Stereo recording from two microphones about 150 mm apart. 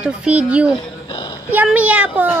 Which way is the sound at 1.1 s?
30° left (ahead or behind).